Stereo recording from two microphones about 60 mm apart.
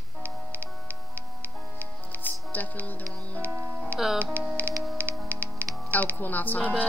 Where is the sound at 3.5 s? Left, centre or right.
Right.